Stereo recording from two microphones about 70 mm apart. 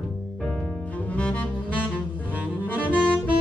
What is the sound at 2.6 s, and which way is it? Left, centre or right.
Music, left.